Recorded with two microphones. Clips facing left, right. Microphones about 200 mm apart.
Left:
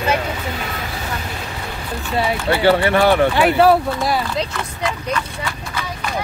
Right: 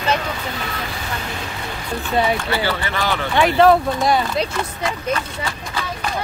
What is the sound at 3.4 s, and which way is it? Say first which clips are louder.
Speech: even; 5° left (ahead or behind).